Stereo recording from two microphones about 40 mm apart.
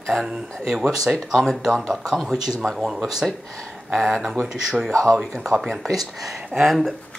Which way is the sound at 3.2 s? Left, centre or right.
Right.